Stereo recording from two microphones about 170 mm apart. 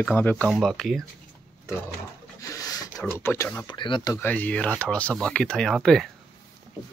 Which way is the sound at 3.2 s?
15° left (ahead or behind).